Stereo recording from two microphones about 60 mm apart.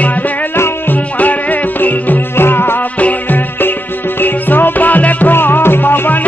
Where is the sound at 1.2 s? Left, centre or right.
Left.